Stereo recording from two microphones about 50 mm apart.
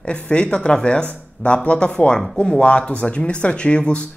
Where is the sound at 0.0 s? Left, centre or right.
Centre.